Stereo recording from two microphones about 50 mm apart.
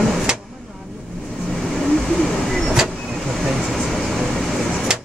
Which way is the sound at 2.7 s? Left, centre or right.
Centre.